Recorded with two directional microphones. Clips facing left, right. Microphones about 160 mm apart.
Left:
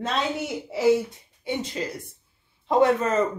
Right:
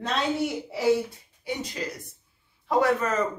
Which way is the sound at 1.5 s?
25° left (ahead or behind).